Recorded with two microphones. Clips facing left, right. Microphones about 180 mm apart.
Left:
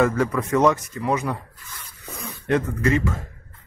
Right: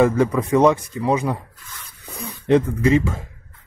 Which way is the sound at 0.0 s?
25° right (ahead or behind).